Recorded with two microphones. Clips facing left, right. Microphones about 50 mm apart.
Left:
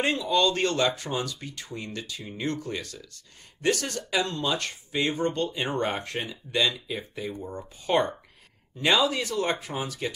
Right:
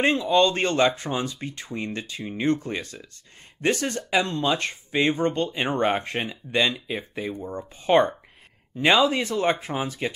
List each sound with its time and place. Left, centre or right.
0.0 s speech: right